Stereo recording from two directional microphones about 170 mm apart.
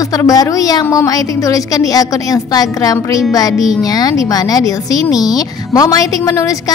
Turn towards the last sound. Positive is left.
turn(degrees=20)  # may be behind; listen again after turning